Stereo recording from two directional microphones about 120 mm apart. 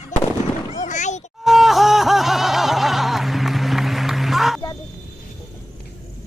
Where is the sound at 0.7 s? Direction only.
90° left.